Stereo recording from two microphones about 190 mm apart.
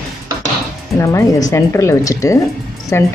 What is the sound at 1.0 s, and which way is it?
A woman's voice, 15° left (ahead or behind).